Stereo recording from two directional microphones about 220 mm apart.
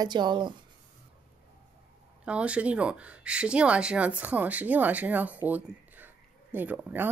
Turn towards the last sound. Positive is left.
turn(degrees=-5)  # may be behind; listen again after turning